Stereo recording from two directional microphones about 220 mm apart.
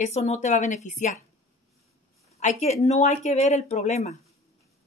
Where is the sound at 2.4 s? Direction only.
30° left (ahead or behind).